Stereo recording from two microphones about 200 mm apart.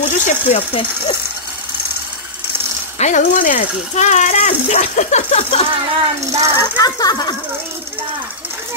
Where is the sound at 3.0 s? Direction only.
40° left (ahead or behind).